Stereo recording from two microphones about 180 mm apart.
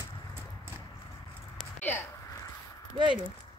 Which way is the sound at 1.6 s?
10° left (ahead or behind).